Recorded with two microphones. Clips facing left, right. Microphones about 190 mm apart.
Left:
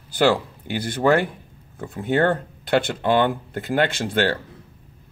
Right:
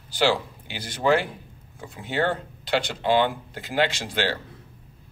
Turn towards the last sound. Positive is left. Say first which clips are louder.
# left 5 dB
turn(degrees=55)  # may be behind; listen again after turning